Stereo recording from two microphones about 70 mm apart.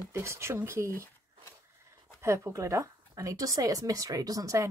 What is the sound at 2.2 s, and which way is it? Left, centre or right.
Speech, right.